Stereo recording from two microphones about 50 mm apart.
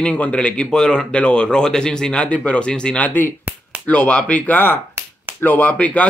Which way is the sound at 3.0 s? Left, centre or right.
Left.